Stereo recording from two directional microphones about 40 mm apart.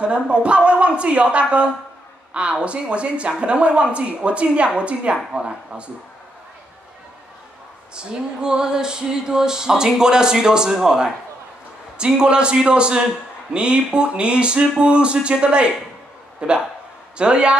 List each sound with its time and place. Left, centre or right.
0.0 s a man's voice: right
7.9 s a sound: right
12.0 s a man's voice: right